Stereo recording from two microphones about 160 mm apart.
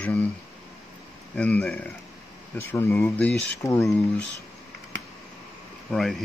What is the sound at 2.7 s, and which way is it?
Speech, 15° left (ahead or behind).